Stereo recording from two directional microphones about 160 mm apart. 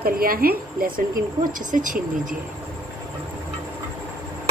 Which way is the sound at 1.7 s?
55° right (ahead or behind).